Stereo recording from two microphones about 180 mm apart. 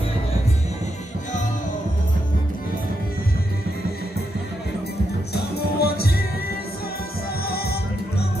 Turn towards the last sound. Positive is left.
turn(degrees=60)  # may be behind; listen again after turning